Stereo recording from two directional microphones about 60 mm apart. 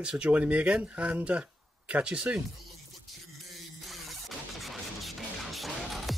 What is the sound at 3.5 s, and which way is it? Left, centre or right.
Music, centre.